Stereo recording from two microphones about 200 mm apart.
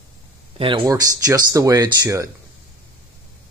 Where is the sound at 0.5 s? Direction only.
25° right (ahead or behind).